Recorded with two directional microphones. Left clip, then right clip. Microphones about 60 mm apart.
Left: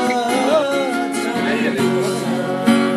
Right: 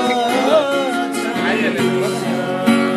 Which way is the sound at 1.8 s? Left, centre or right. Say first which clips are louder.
Right 1 dB; left.